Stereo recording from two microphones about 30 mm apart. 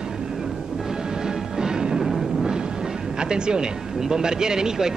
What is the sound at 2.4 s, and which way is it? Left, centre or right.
Artillery fire, right.